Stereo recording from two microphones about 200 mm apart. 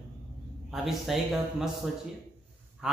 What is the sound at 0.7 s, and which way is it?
A man's voice, centre (ahead or behind).